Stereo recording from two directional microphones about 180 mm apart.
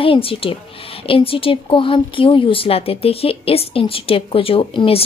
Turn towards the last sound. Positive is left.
turn(degrees=30)  # may be behind; listen again after turning